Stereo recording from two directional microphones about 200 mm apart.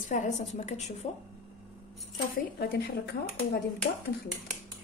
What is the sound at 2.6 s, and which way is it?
A woman's voice, 55° left (ahead or behind).